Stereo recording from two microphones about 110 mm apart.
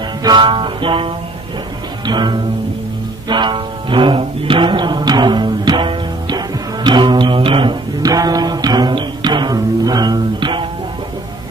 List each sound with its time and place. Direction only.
0.2 s music: 45° right (ahead or behind)
8.0 s music: 35° right (ahead or behind)